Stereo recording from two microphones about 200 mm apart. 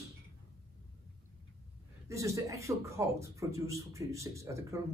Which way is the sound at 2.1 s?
15° right (ahead or behind).